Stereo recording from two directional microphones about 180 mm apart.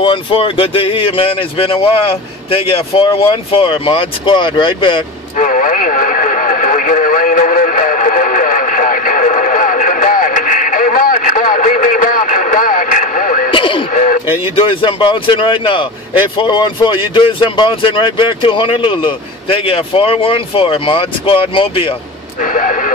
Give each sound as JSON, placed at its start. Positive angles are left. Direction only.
{"t": 0.0, "sound": "speech", "side_deg": 30}
{"t": 5.4, "sound": "radio", "side_deg": 45}
{"t": 13.5, "sound": "radio", "side_deg": 30}
{"t": 13.9, "sound": "a sound", "side_deg": 45}
{"t": 14.5, "sound": "speech", "side_deg": 30}
{"t": 22.4, "sound": "speech", "side_deg": 45}